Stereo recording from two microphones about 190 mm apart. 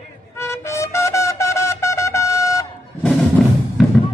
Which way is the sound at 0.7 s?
15° left (ahead or behind).